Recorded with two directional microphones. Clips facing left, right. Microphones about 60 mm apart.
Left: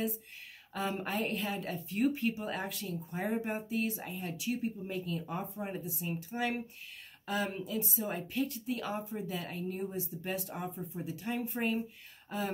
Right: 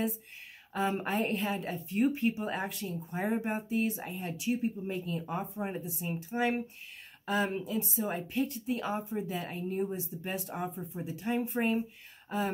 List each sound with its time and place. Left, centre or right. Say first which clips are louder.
0.7 s a woman's voice: right 4 dB; right